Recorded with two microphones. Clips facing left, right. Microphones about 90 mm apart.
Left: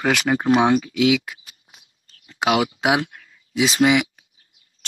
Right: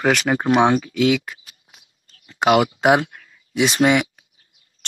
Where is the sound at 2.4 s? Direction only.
45° right (ahead or behind).